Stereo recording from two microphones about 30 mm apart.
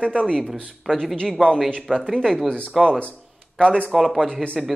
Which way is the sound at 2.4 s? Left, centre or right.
Left.